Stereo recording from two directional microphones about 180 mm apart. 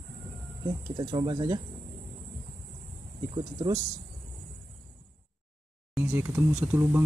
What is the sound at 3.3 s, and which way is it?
Speech, 25° right (ahead or behind).